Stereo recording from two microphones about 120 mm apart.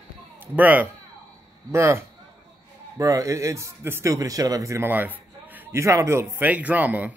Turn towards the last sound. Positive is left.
turn(degrees=-15)  # may be behind; listen again after turning